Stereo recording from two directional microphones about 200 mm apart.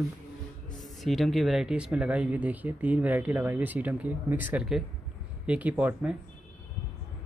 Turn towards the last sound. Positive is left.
turn(degrees=-10)  # may be behind; listen again after turning